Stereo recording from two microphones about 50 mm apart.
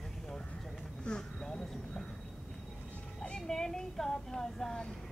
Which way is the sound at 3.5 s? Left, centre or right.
Centre.